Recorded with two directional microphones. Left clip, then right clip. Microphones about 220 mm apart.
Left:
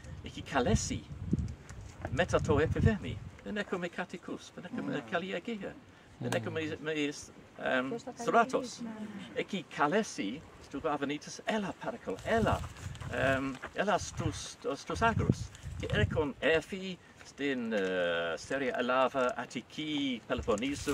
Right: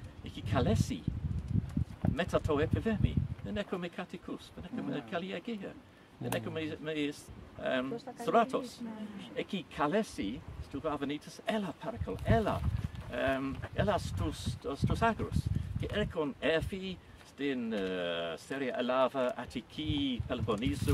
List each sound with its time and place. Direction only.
0.4 s speech: centre (ahead or behind)
2.1 s speech: centre (ahead or behind)